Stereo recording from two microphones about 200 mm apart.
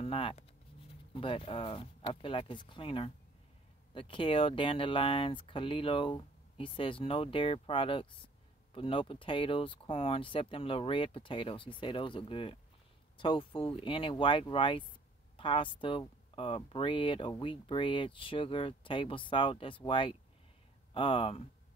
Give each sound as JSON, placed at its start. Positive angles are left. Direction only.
{"t": 0.0, "sound": "speech", "side_deg": 25}